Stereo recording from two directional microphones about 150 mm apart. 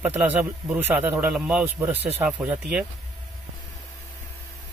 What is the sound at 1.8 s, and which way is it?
Speech, 10° right (ahead or behind).